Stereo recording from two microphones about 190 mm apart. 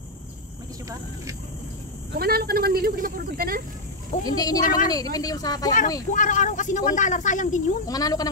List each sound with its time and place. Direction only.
2.1 s speech: 55° right (ahead or behind)
4.1 s a woman's voice: 40° left (ahead or behind)
4.8 s a woman's voice: 20° left (ahead or behind)
6.1 s speech: 40° left (ahead or behind)
7.8 s a woman's voice: 20° left (ahead or behind)